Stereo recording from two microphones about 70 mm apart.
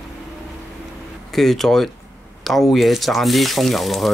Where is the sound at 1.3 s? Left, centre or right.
Centre.